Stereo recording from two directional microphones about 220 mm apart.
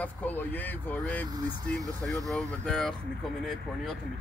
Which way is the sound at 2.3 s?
Centre (ahead or behind).